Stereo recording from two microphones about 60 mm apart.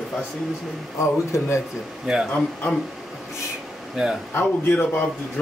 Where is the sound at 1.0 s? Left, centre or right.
Left.